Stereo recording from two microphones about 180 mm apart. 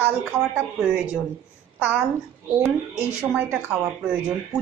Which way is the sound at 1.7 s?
10° right (ahead or behind).